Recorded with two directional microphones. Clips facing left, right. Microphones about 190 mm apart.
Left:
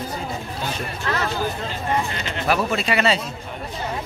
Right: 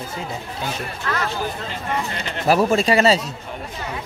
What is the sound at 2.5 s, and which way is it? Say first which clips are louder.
Speech: right 5 dB; 35° right (ahead or behind).